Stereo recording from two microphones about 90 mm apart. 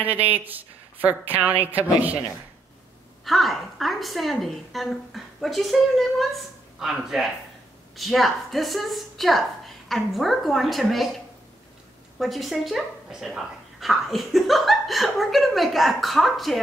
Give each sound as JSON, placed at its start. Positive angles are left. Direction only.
{"t": 0.0, "sound": "a woman's voice", "side_deg": -20}
{"t": 3.3, "sound": "a woman's voice", "side_deg": 0}
{"t": 12.2, "sound": "a woman's voice", "side_deg": 0}